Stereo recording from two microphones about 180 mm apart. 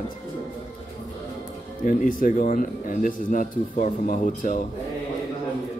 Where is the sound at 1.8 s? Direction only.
50° left (ahead or behind).